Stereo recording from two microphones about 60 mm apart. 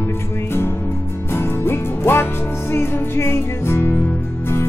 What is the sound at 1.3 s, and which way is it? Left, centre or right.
Music, left.